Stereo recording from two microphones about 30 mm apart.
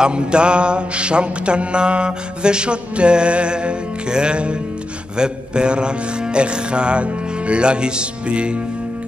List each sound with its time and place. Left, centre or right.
0.0 s mantra: right